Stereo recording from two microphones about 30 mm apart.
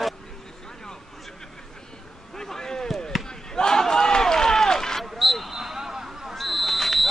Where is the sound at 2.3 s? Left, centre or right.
Centre.